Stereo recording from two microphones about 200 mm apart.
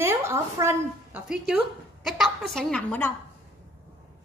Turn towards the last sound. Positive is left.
turn(degrees=5)  # may be behind; listen again after turning